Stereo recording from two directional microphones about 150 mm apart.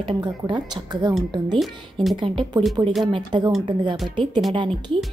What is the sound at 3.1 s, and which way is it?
A woman's voice, 30° right (ahead or behind).